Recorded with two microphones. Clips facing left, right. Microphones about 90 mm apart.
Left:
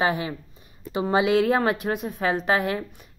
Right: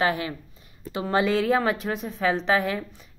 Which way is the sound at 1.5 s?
40° left (ahead or behind).